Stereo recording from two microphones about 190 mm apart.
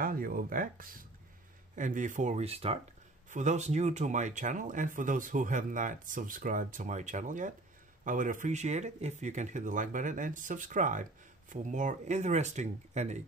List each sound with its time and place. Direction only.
0.0 s speech: 50° right (ahead or behind)